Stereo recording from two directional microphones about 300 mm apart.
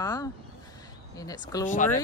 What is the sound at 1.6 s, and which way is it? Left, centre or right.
Speech, left.